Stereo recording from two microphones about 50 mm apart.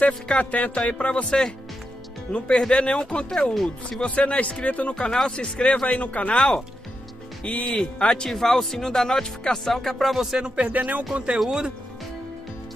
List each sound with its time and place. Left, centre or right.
0.0 s speech: left
3.5 s speech: centre
4.0 s speech: left
4.9 s speech: centre; by 6.3 s left
6.3 s speech: centre
7.6 s speech: centre
10.1 s speech: centre
10.5 s speech: right
11.3 s speech: centre